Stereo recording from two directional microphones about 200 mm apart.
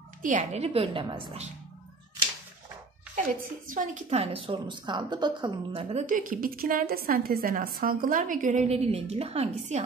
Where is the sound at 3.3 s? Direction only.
40° right (ahead or behind).